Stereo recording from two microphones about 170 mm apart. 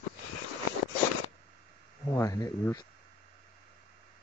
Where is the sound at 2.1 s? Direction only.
20° left (ahead or behind).